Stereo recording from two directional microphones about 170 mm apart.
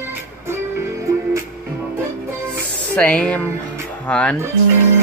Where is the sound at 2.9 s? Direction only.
5° left (ahead or behind).